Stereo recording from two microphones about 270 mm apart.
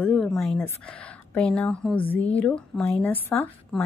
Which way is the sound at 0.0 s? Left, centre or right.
Centre.